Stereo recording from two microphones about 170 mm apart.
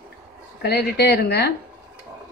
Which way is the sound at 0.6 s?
75° left (ahead or behind).